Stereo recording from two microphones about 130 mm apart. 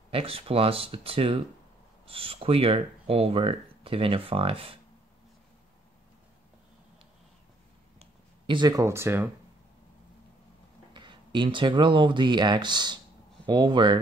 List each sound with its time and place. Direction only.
0.1 s speech: 45° right (ahead or behind)
8.0 s speech: 35° right (ahead or behind); by 9.3 s 20° right (ahead or behind)
10.9 s speech: 35° right (ahead or behind)